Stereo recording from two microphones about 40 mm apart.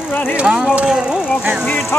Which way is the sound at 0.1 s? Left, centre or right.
Left.